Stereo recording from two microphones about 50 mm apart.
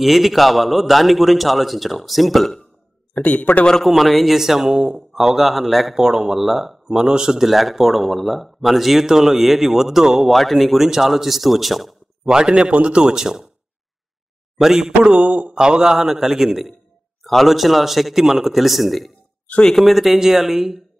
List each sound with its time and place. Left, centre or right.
0.0 s a man's voice: centre
3.2 s speech: left
3.8 s a man's voice: centre
12.3 s a man's voice: centre
14.6 s a man's voice: centre
14.9 s speech: right
15.5 s a man's voice: centre